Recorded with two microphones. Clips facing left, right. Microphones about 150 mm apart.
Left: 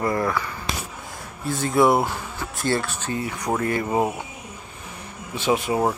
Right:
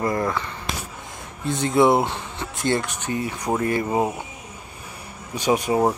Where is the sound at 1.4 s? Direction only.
20° right (ahead or behind).